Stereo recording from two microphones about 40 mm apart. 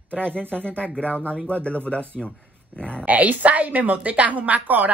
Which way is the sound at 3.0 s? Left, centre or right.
Right.